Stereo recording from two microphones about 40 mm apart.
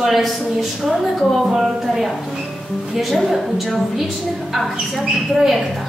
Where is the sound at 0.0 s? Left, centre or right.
Centre.